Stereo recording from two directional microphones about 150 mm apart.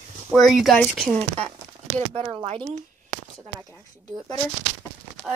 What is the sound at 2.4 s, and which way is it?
Speech, 45° right (ahead or behind).